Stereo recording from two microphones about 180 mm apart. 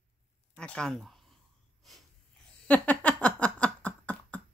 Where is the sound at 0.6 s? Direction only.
5° left (ahead or behind).